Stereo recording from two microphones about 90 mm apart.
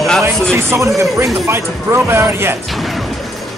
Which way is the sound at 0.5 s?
30° right (ahead or behind).